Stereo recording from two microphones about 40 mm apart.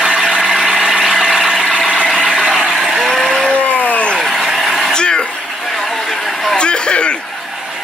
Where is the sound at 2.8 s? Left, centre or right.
Centre.